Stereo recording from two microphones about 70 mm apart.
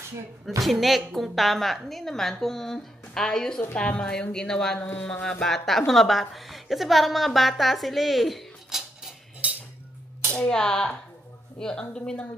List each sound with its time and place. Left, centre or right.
0.6 s a woman's voice: centre
9.4 s cutlery: centre
10.3 s a woman's voice: centre